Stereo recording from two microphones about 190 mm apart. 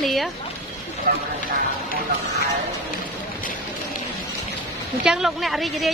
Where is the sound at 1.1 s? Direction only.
55° right (ahead or behind).